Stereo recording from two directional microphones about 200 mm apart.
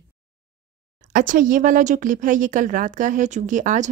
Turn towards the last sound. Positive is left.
turn(degrees=-40)  # may be behind; listen again after turning